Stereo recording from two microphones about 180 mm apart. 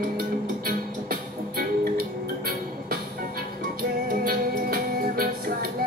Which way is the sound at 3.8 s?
55° right (ahead or behind).